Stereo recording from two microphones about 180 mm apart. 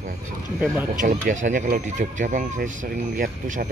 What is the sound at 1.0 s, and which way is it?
Speech, 45° right (ahead or behind).